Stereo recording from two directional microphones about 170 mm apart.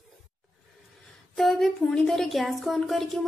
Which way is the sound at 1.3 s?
Centre (ahead or behind).